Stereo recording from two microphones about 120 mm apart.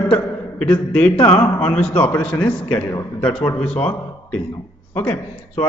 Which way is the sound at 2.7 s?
45° left (ahead or behind).